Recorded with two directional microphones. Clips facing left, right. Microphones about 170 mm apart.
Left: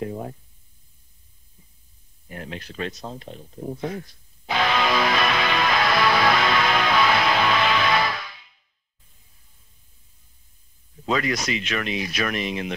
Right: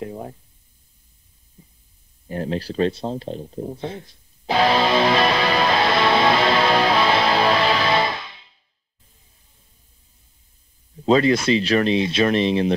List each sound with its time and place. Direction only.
0.0 s speech: 15° right (ahead or behind)
2.2 s speech: 30° right (ahead or behind)
4.5 s music: 35° right (ahead or behind)
11.1 s speech: 30° right (ahead or behind)